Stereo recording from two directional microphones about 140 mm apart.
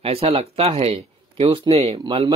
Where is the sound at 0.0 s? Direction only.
45° right (ahead or behind).